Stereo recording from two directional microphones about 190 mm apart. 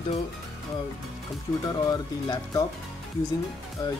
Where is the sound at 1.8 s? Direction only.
20° left (ahead or behind).